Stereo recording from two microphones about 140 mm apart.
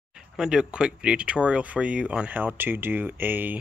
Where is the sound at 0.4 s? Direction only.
5° right (ahead or behind).